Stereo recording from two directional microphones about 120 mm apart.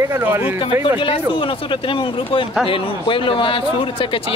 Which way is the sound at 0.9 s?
45° left (ahead or behind).